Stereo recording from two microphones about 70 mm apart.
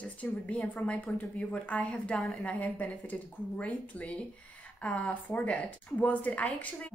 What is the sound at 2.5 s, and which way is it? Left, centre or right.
Speech, centre.